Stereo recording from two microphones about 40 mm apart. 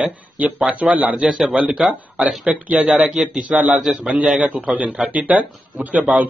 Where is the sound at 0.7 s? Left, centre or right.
Right.